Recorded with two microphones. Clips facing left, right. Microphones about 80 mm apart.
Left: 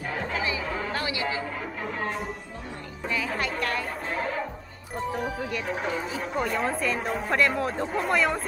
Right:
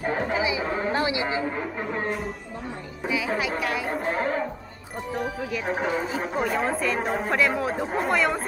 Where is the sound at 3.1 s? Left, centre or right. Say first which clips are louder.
Right 3 dB; centre.